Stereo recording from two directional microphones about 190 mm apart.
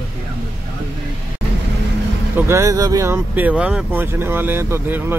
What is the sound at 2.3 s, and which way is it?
Speech, 15° right (ahead or behind).